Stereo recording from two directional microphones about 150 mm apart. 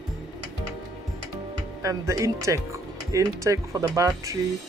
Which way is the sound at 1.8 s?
20° right (ahead or behind).